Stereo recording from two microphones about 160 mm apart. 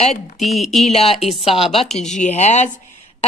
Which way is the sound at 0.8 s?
40° left (ahead or behind).